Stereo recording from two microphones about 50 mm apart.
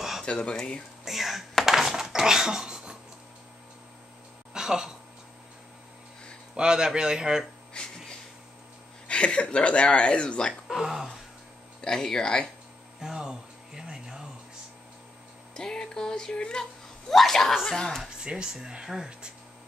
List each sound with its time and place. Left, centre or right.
0.2 s speech: centre
1.0 s whispering: centre
1.7 s a sound: centre
4.6 s speech: centre
6.5 s speech: centre
7.7 s a sound: centre
9.0 s speech: left
10.7 s speech: centre
11.8 s speech: centre
13.0 s a sound: centre
15.5 s music: centre
17.1 s speech: centre
18.2 s speech: centre